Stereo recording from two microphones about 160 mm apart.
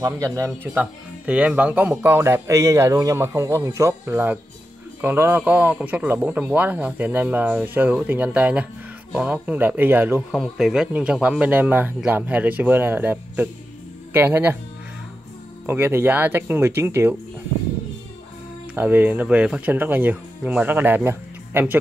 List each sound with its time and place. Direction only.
0.0 s speech: 20° right (ahead or behind)
10.3 s speech: centre (ahead or behind)
15.6 s speech: 15° right (ahead or behind)
18.8 s speech: 10° right (ahead or behind)